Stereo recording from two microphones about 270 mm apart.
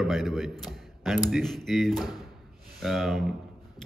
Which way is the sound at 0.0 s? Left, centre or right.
Centre.